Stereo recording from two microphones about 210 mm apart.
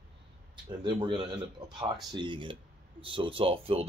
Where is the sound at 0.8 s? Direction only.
20° right (ahead or behind).